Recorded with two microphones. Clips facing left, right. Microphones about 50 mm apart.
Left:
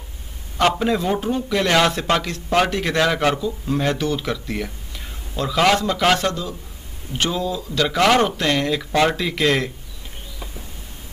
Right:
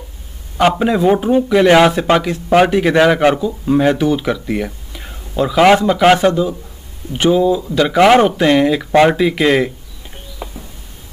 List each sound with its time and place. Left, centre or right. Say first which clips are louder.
0.6 s speech: right 6 dB; centre